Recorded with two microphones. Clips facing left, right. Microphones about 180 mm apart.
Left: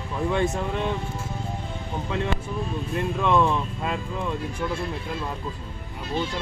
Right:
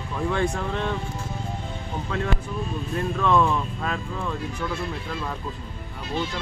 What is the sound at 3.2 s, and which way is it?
Speech, 15° left (ahead or behind).